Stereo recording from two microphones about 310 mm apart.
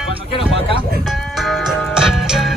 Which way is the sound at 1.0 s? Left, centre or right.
Centre.